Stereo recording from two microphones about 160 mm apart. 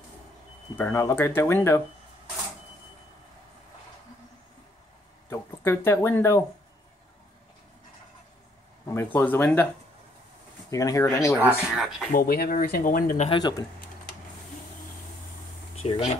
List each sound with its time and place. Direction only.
0.7 s speech: 15° left (ahead or behind)
5.3 s a sound: 15° left (ahead or behind)
5.9 s speech: 15° left (ahead or behind)
8.9 s speech: 10° left (ahead or behind)
10.7 s speech: 20° left (ahead or behind)
11.3 s speech: 5° right (ahead or behind)
12.1 s speech: 65° left (ahead or behind)
13.3 s speech: 25° left (ahead or behind)
15.7 s a sound: 40° left (ahead or behind)